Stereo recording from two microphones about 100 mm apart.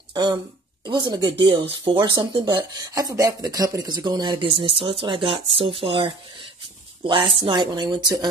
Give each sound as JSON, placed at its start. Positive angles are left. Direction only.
{"t": 0.1, "sound": "speech", "side_deg": -50}
{"t": 2.9, "sound": "speech", "side_deg": -35}